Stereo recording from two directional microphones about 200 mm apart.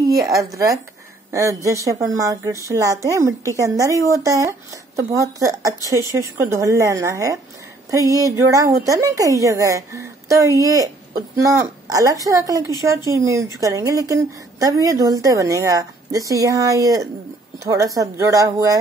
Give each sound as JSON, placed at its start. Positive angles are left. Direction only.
{"t": 0.0, "sound": "a woman's voice", "side_deg": -15}